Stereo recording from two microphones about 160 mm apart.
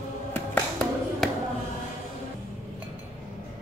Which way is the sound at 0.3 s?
10° left (ahead or behind).